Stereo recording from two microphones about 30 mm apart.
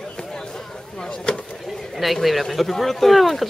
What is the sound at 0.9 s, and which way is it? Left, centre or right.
Chop, left.